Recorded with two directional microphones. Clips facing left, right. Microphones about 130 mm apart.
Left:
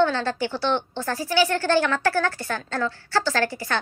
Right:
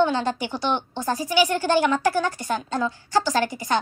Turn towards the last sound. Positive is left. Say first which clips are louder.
# right 2 dB
turn(degrees=-15)  # may be behind; listen again after turning